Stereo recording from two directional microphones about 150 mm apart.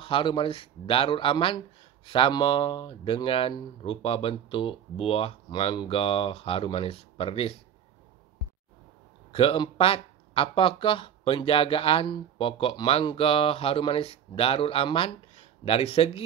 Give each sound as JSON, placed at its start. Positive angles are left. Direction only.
{"t": 0.0, "sound": "speech", "side_deg": 35}
{"t": 9.3, "sound": "speech", "side_deg": 40}